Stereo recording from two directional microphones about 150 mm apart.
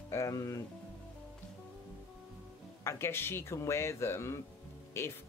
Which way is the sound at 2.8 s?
15° left (ahead or behind).